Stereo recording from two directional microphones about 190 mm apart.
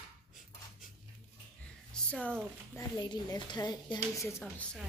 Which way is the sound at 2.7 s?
20° left (ahead or behind).